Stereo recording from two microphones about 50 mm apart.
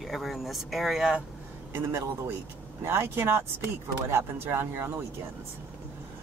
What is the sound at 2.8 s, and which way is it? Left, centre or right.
Speech, right.